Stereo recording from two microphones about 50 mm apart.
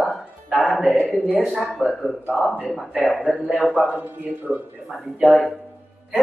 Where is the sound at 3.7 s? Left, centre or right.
Right.